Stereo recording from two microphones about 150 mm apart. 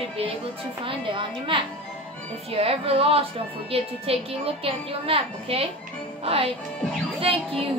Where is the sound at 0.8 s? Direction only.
35° right (ahead or behind).